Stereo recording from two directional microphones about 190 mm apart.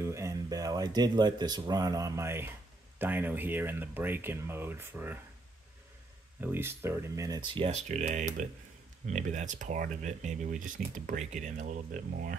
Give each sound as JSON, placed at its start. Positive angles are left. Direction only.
{"t": 0.0, "sound": "speech", "side_deg": -15}
{"t": 6.4, "sound": "speech", "side_deg": -10}